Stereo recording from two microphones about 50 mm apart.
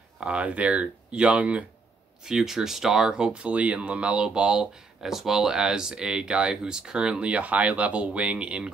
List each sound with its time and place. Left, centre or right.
0.2 s speech: right
2.2 s speech: centre